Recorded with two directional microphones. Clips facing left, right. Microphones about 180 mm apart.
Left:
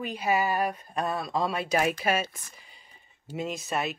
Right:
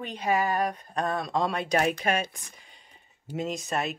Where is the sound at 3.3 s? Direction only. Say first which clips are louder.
Right 1 dB; centre (ahead or behind).